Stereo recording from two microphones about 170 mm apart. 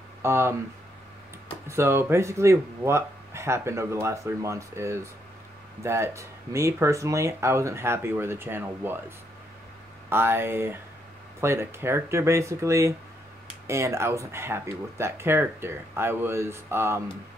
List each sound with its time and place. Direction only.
0.2 s speech: 15° right (ahead or behind)
1.7 s speech: 15° right (ahead or behind)
10.0 s speech: 15° right (ahead or behind)